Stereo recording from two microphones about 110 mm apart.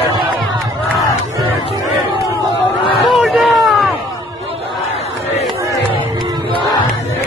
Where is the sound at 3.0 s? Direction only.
Centre (ahead or behind).